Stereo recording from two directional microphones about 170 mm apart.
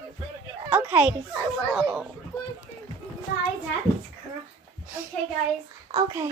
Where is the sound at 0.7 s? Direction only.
10° right (ahead or behind).